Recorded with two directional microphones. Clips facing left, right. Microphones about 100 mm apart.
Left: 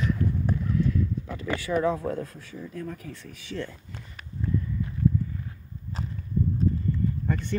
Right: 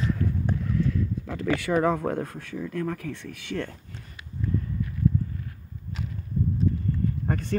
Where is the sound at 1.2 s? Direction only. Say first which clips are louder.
Right 4 dB; 80° right; by 3.7 s 60° right (ahead or behind).